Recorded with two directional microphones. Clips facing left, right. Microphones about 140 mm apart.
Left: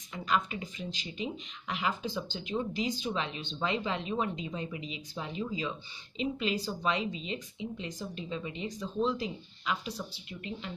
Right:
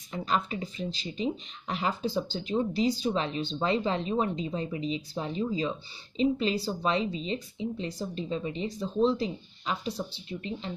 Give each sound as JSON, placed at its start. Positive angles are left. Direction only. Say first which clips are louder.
{"t": 0.1, "sound": "speech", "louder": "right 2 dB", "side_deg": -35}